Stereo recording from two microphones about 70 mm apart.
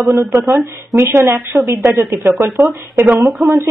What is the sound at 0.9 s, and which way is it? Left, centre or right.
Speech, right.